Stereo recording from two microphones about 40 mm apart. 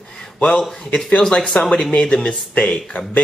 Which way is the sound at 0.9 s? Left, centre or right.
Centre.